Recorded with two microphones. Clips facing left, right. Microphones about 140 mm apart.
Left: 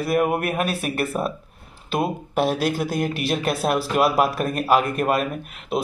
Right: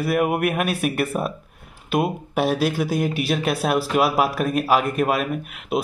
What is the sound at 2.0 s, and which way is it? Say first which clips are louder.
Speech: right 1 dB; 5° right (ahead or behind).